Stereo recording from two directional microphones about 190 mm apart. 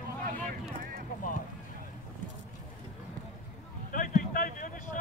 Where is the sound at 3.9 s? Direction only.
45° left (ahead or behind).